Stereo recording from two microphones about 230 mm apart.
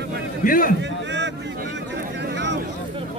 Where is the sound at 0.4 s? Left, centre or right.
Left.